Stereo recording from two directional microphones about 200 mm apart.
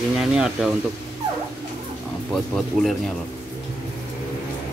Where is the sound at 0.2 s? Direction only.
5° right (ahead or behind).